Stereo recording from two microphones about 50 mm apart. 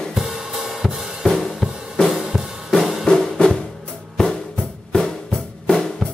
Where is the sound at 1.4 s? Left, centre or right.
Centre.